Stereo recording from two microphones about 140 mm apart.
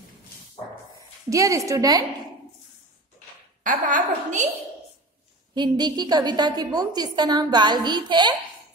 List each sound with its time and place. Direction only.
1.3 s a woman's voice: 25° right (ahead or behind)
3.6 s a woman's voice: 70° right (ahead or behind)
5.5 s a woman's voice: 30° right (ahead or behind)